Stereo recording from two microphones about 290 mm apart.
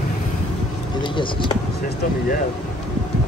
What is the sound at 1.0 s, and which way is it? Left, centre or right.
Speech, centre.